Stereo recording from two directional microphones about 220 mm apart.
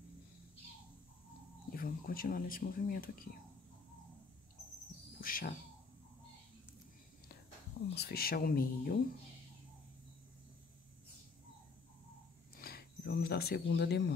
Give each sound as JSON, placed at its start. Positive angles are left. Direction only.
{"t": 1.7, "sound": "speech", "side_deg": 40}
{"t": 5.2, "sound": "bird", "side_deg": 40}
{"t": 7.9, "sound": "speech", "side_deg": 45}
{"t": 12.5, "sound": "speech", "side_deg": 45}